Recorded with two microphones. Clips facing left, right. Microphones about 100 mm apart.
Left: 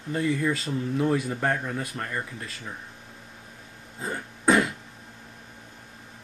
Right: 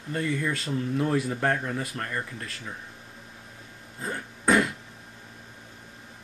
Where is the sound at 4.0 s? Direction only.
Centre (ahead or behind).